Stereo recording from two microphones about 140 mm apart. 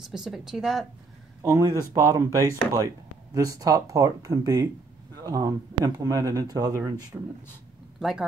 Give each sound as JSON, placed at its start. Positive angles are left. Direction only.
{"t": 0.0, "sound": "speech", "side_deg": 0}
{"t": 1.4, "sound": "speech", "side_deg": -20}
{"t": 8.0, "sound": "speech", "side_deg": 0}